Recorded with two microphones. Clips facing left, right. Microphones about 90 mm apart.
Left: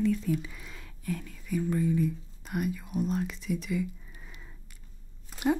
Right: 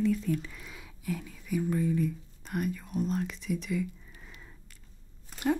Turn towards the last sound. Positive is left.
turn(degrees=5)  # may be behind; listen again after turning